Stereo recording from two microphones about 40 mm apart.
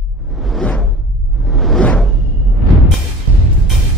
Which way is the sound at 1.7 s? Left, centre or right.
Left.